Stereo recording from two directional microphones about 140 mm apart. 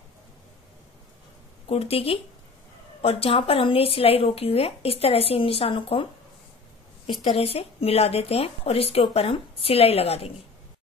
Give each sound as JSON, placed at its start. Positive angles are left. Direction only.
{"t": 1.7, "sound": "a woman's voice", "side_deg": 45}
{"t": 7.2, "sound": "a woman's voice", "side_deg": 45}